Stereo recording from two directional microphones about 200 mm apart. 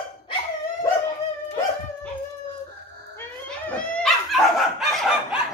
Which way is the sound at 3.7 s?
Centre (ahead or behind).